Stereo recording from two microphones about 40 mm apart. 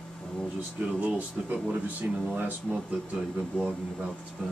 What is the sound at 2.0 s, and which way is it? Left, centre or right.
Speech, right.